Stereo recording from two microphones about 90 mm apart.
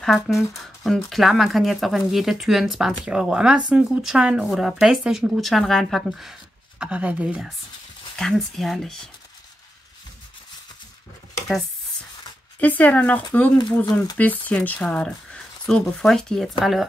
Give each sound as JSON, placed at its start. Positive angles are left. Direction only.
{"t": 0.0, "sound": "speech", "side_deg": 0}
{"t": 6.8, "sound": "speech", "side_deg": -15}
{"t": 8.2, "sound": "speech", "side_deg": 0}
{"t": 12.5, "sound": "speech", "side_deg": 20}